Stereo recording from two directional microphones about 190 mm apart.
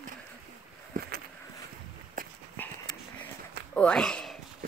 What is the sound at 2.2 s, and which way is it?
Dog, 45° right (ahead or behind).